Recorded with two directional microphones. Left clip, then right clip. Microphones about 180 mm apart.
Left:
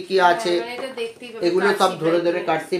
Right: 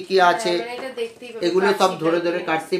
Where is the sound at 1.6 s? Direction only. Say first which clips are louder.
Even; 15° right (ahead or behind).